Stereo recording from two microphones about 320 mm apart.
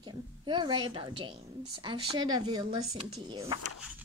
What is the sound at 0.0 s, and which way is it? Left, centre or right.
A woman's voice, centre.